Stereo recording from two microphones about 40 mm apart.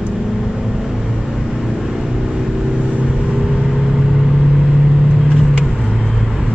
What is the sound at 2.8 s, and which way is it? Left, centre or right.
Vehicle, right.